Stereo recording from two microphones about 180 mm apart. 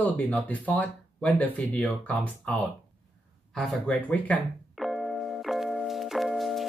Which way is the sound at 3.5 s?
5° left (ahead or behind).